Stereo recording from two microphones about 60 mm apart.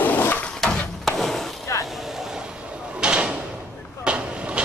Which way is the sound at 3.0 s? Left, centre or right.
Centre.